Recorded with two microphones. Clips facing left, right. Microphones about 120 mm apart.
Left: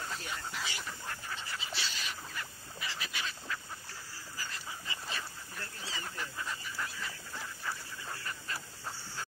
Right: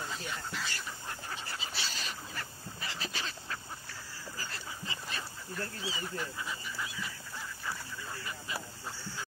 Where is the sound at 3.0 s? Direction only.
35° right (ahead or behind).